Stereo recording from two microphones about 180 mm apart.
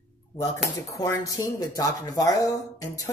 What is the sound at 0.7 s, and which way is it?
A woman's voice, 20° left (ahead or behind).